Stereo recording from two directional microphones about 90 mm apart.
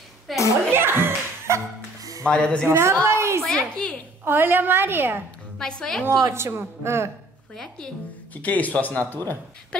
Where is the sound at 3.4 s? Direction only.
5° left (ahead or behind).